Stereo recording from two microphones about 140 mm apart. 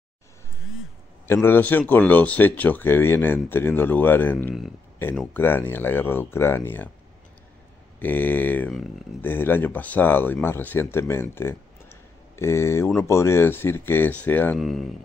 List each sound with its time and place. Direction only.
1.2 s speech: 15° left (ahead or behind)
8.0 s speech: 10° left (ahead or behind)
14.6 s speech: centre (ahead or behind)